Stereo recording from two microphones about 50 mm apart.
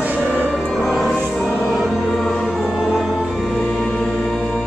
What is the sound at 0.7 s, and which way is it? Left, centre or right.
Music, centre.